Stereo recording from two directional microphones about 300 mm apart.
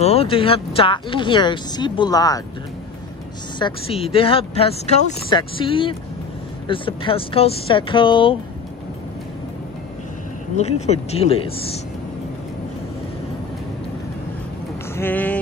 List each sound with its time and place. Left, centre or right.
0.0 s speech: centre
3.5 s speech: centre
10.6 s speech: left
15.0 s speech: centre